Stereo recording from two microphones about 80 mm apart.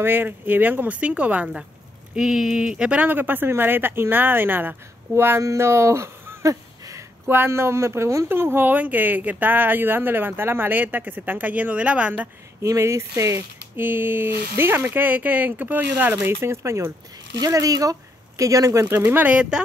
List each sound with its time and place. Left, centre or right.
0.0 s speech: right
7.2 s speech: right
12.6 s speech: right
13.7 s speech: right